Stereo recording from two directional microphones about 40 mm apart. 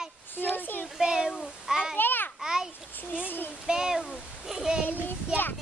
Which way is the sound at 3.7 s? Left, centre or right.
Centre.